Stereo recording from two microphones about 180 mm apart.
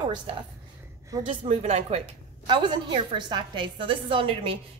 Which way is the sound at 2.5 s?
25° right (ahead or behind).